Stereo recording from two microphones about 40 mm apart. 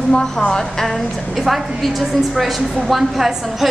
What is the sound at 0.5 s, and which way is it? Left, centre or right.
Speech, centre.